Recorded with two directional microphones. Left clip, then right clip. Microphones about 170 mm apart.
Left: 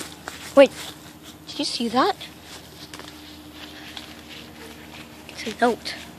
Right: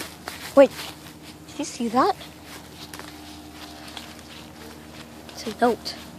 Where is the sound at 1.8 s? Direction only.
Centre (ahead or behind).